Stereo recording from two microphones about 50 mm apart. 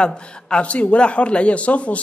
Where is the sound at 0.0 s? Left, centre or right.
Left.